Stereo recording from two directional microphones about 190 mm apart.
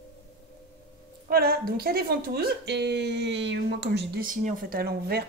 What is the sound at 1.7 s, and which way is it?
Speech, 50° right (ahead or behind).